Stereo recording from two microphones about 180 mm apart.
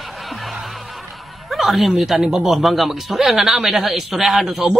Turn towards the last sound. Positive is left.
turn(degrees=0)  # may be behind; listen again after turning